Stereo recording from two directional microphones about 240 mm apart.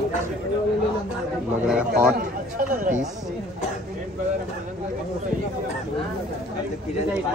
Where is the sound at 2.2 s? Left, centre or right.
Right.